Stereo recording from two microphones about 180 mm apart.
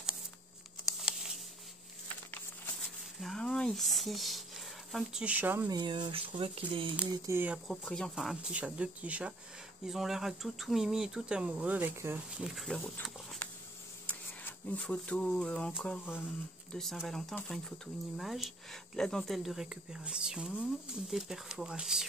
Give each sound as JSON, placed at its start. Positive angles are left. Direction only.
{"t": 0.8, "sound": "a sound", "side_deg": 0}
{"t": 3.2, "sound": "speech", "side_deg": 0}
{"t": 5.7, "sound": "speech", "side_deg": -25}
{"t": 7.1, "sound": "speech", "side_deg": -15}
{"t": 12.4, "sound": "speech", "side_deg": 0}